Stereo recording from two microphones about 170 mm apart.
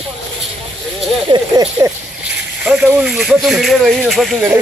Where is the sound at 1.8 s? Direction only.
15° right (ahead or behind).